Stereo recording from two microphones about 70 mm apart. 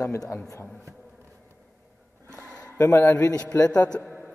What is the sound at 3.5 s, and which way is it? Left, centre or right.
Speech, centre.